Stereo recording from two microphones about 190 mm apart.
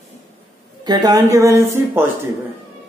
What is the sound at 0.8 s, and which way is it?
A woman's voice, 20° right (ahead or behind).